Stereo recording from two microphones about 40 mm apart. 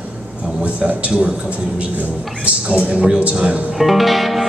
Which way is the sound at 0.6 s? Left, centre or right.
Right.